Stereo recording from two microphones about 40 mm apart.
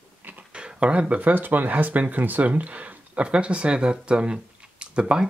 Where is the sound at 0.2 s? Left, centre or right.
Right.